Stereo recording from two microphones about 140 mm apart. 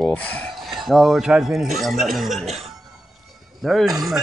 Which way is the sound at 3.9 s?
Centre (ahead or behind).